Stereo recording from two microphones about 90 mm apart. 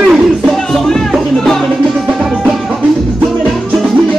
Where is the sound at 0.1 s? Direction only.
Centre (ahead or behind).